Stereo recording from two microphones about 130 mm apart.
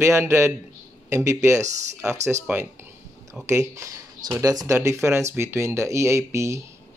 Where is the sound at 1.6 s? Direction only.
65° right (ahead or behind).